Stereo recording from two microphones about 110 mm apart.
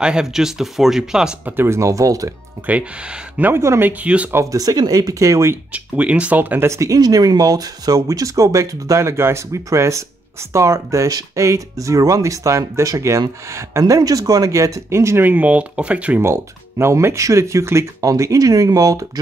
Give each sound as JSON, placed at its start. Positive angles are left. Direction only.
{"t": 0.0, "sound": "speech", "side_deg": -5}
{"t": 1.6, "sound": "speech", "side_deg": -25}
{"t": 3.3, "sound": "speech", "side_deg": -20}
{"t": 4.0, "sound": "speech", "side_deg": -15}
{"t": 4.4, "sound": "speech", "side_deg": -30}
{"t": 5.7, "sound": "speech", "side_deg": -10}
{"t": 16.2, "sound": "speech", "side_deg": -25}